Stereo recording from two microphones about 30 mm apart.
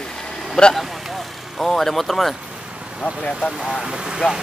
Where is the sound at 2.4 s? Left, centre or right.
Right.